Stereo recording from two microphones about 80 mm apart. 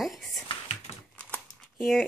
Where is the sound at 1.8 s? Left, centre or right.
Centre.